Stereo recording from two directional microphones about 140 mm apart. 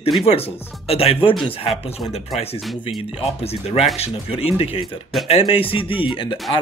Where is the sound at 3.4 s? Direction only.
45° left (ahead or behind).